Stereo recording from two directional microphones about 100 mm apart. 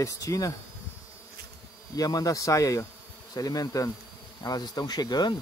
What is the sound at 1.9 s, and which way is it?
Speech, 40° left (ahead or behind).